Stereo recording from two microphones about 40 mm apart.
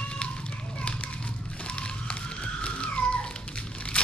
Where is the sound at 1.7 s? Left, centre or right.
Left.